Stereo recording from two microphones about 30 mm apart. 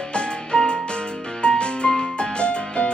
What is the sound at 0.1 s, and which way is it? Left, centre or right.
Music, left.